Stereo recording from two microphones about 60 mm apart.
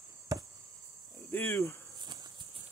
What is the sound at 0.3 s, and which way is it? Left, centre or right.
Chop, right.